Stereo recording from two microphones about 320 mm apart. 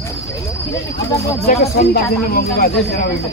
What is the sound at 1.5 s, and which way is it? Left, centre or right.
Speech, left.